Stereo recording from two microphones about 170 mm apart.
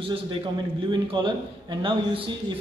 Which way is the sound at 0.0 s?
30° right (ahead or behind).